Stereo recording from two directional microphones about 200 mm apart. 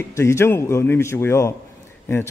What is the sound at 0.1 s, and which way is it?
A man's voice, 15° left (ahead or behind).